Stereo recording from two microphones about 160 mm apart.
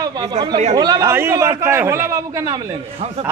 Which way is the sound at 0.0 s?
25° right (ahead or behind).